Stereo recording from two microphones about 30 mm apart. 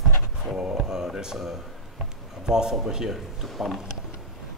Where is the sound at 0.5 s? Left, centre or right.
Right.